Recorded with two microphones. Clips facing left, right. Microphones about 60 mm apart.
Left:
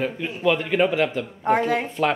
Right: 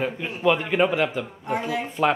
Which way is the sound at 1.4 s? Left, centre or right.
Left.